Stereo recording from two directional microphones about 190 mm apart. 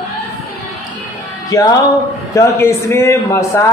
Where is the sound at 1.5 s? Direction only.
20° left (ahead or behind).